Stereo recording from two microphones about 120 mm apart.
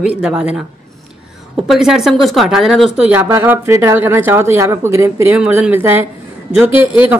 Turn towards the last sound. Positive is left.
turn(degrees=-15)  # may be behind; listen again after turning